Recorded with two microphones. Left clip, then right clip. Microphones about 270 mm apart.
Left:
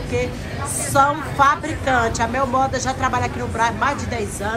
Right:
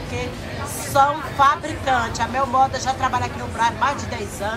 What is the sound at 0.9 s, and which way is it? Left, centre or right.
A woman's voice, centre.